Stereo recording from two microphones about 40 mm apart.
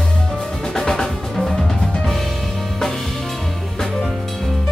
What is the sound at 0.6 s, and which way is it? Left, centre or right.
Music, centre.